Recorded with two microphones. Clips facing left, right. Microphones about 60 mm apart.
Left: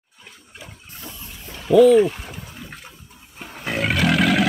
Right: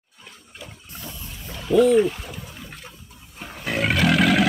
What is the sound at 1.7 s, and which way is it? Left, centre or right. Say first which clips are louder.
Speech: left 4 dB; left.